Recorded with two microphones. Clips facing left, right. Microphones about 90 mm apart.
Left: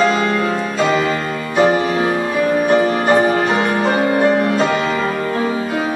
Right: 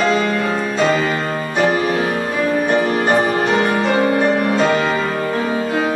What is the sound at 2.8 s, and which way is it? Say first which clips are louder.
Music: left 2 dB; 30° left (ahead or behind).